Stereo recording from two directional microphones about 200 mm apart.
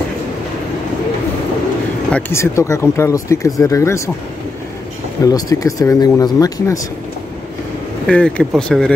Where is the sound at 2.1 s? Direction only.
10° left (ahead or behind).